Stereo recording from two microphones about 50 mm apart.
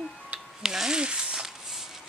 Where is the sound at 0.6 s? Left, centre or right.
Centre.